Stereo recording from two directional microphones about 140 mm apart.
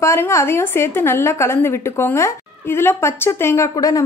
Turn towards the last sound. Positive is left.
turn(degrees=25)  # may be behind; listen again after turning